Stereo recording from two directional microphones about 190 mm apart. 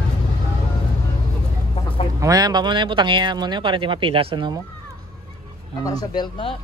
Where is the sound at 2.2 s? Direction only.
20° right (ahead or behind).